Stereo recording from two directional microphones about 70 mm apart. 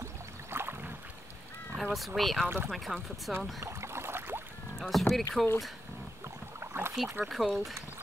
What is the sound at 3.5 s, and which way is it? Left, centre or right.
Boat, right.